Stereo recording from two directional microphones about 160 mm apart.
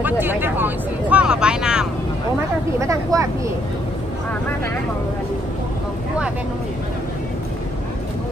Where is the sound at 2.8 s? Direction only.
20° right (ahead or behind).